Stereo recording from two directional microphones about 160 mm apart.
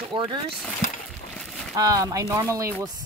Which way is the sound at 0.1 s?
30° right (ahead or behind).